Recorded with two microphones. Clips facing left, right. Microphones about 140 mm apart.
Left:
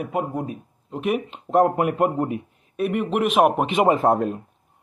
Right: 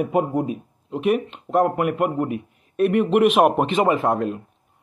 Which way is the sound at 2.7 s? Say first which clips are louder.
Right 5 dB; 10° left (ahead or behind).